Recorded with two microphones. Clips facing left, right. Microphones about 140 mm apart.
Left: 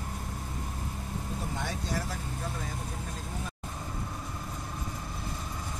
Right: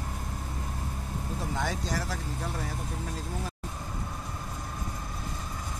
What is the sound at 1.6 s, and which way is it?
Vehicle, 90° right.